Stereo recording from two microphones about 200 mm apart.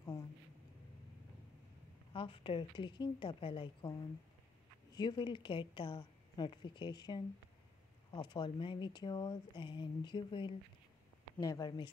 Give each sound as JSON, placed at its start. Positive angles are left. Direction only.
{"t": 2.1, "sound": "speech", "side_deg": 25}
{"t": 4.9, "sound": "speech", "side_deg": 20}